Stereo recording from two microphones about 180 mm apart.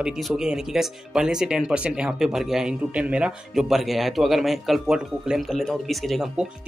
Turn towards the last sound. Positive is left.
turn(degrees=0)  # may be behind; listen again after turning